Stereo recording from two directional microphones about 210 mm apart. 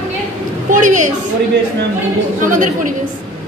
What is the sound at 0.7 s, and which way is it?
Speech, 35° right (ahead or behind).